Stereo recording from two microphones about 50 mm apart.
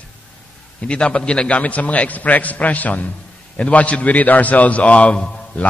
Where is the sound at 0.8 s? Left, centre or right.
Left.